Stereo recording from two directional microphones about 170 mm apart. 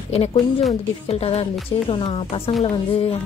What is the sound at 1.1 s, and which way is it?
Speech, 35° left (ahead or behind).